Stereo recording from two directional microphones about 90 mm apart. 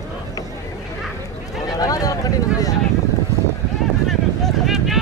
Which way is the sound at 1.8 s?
40° left (ahead or behind).